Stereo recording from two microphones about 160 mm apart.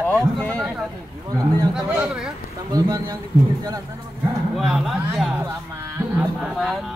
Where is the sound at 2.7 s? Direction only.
20° right (ahead or behind).